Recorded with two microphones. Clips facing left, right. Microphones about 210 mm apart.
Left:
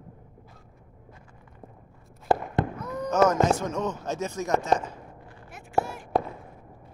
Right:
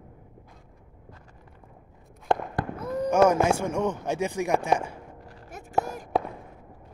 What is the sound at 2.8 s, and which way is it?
Fireworks, 30° right (ahead or behind).